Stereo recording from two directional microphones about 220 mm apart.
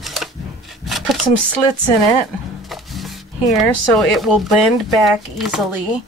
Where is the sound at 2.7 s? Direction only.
Centre (ahead or behind).